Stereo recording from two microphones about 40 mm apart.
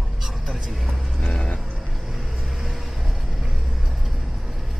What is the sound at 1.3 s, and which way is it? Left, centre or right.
Vehicle, left.